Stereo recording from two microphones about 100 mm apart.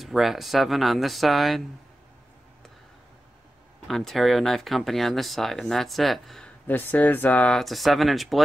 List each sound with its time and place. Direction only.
0.0 s speech: centre (ahead or behind)
3.8 s speech: centre (ahead or behind)
6.7 s speech: 20° left (ahead or behind)
7.5 s speech: centre (ahead or behind)